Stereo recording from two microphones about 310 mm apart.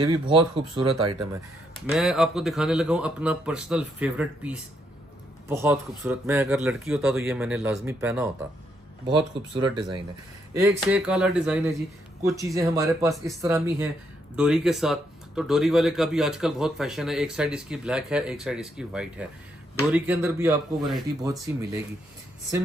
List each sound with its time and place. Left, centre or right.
0.0 s speech: centre
1.9 s speech: centre